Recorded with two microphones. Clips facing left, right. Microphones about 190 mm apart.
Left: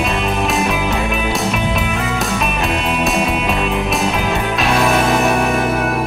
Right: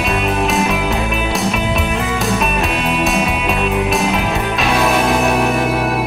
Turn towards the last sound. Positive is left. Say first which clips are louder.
# right 1 dB
turn(degrees=0)  # may be behind; listen again after turning